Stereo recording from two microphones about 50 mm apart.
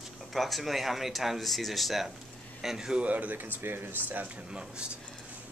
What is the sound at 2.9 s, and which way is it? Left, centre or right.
Speech, right.